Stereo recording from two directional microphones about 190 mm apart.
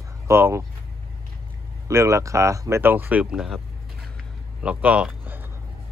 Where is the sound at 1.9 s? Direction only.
15° right (ahead or behind).